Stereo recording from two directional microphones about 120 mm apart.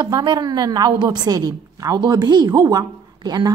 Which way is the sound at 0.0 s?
40° right (ahead or behind).